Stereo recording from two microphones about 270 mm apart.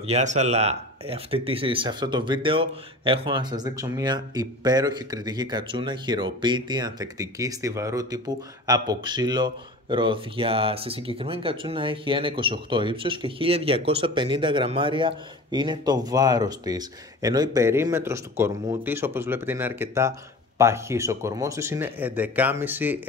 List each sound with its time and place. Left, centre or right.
0.0 s speech: right; by 22.9 s centre